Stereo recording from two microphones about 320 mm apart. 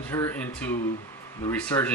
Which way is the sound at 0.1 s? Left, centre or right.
Centre.